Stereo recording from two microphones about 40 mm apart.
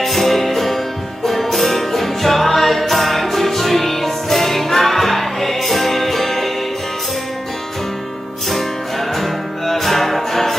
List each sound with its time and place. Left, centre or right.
0.0 s music: centre
9.1 s music: centre